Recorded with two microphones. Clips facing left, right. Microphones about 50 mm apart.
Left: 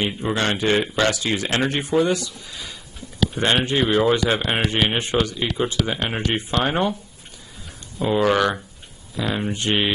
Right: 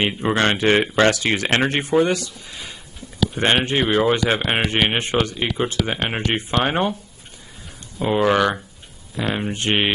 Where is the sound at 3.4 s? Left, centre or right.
Right.